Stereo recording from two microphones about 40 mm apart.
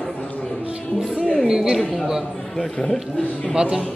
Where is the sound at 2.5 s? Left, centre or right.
Centre.